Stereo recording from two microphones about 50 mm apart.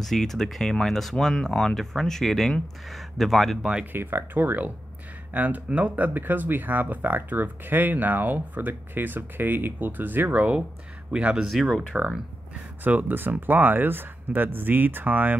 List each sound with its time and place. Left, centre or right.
0.0 s speech: centre
3.8 s speech: right
6.0 s speech: right
11.1 s speech: right
11.4 s speech: centre
11.9 s speech: right
12.8 s speech: right